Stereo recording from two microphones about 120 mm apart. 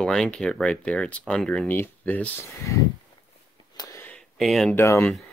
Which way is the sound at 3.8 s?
35° left (ahead or behind).